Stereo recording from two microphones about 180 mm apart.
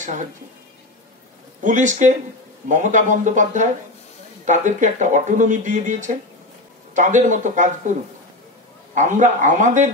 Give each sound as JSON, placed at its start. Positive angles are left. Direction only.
{"t": 0.0, "sound": "speech", "side_deg": -45}
{"t": 1.6, "sound": "speech", "side_deg": -45}
{"t": 8.9, "sound": "speech", "side_deg": -45}